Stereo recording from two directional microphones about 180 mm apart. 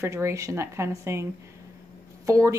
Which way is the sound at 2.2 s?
15° right (ahead or behind).